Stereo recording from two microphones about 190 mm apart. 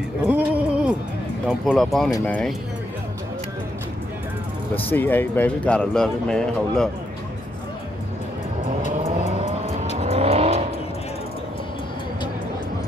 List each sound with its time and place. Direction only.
0.3 s a sound: 5° right (ahead or behind)
1.5 s speech: centre (ahead or behind)
4.7 s speech: 10° left (ahead or behind)
8.9 s vehicle: 35° right (ahead or behind)